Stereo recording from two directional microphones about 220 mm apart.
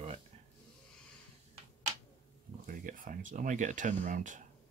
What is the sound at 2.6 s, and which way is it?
Speech, 40° right (ahead or behind).